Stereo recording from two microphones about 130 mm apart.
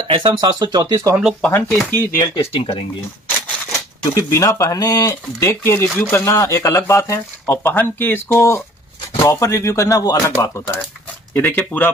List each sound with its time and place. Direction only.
0.0 s speech: 40° right (ahead or behind)
1.9 s speech: 20° left (ahead or behind)
2.3 s speech: 45° left (ahead or behind)
3.3 s a sound: 10° left (ahead or behind)
4.0 s speech: 25° left (ahead or behind)